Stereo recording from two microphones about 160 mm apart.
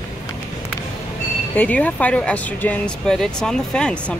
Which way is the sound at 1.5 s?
10° left (ahead or behind).